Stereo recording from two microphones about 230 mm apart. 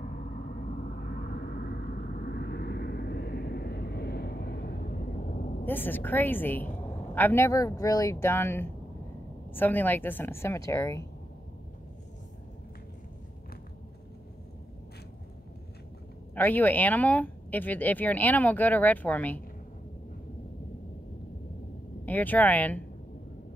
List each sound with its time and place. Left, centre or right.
0.0 s vehicle: left
5.7 s speech: centre
16.3 s speech: centre
22.0 s speech: centre